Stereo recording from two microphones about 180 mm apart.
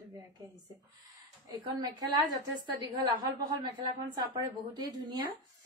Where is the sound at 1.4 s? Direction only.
20° right (ahead or behind).